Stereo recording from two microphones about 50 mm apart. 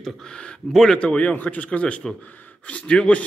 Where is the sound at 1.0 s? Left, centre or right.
Left.